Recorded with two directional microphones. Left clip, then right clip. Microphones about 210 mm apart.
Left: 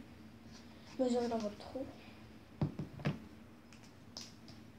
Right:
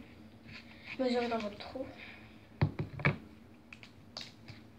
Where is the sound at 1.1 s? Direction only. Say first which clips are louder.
Right 3 dB; centre (ahead or behind).